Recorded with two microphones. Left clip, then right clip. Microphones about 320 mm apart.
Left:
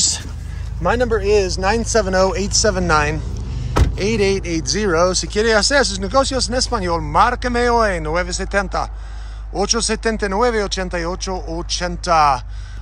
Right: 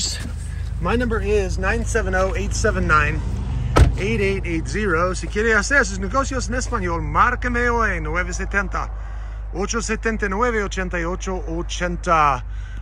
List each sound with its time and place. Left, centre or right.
0.8 s speech: left; by 12.4 s centre